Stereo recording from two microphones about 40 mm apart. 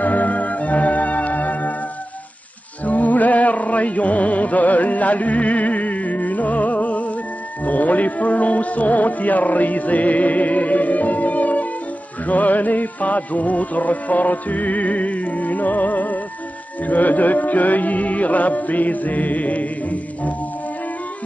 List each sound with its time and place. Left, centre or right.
0.0 s music: left
2.8 s music: left